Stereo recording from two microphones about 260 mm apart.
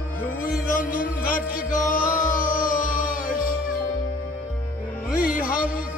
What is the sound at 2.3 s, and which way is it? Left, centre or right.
Music, left.